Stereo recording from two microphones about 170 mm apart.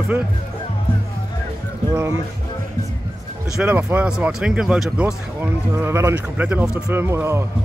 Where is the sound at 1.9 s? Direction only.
15° right (ahead or behind).